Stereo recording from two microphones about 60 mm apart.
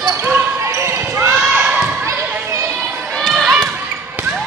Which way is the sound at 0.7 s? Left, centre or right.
Right.